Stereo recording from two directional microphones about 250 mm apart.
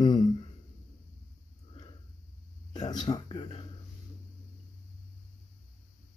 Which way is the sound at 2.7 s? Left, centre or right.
Centre.